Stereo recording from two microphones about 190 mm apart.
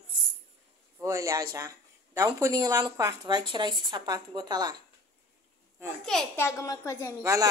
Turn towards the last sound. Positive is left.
turn(degrees=-15)  # may be behind; listen again after turning